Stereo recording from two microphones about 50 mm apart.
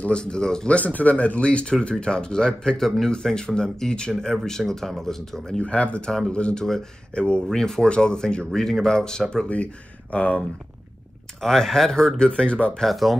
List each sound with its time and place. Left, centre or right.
0.0 s speech: centre
0.7 s speech: left; by 5.6 s centre
5.6 s speech: left
5.9 s speech: centre
10.1 s speech: left
11.4 s speech: centre
12.3 s speech: left
12.8 s speech: centre